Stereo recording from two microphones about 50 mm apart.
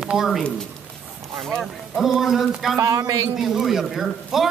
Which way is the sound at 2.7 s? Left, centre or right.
Right.